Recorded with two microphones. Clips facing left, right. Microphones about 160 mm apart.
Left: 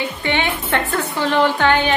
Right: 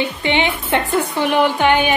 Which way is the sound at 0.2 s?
15° right (ahead or behind).